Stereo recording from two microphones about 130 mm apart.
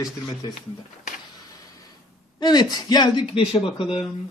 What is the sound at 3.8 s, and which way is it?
Speech, 5° right (ahead or behind).